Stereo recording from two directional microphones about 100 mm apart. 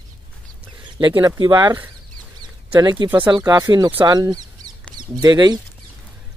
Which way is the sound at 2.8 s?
45° right (ahead or behind).